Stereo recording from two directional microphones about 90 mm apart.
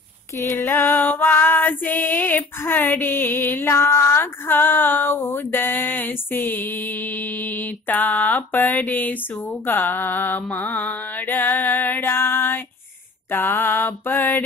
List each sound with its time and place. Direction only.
0.4 s female singing: 30° left (ahead or behind)